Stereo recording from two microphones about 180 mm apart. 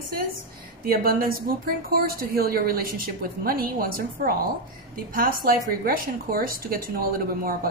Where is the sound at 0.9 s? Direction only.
55° right (ahead or behind).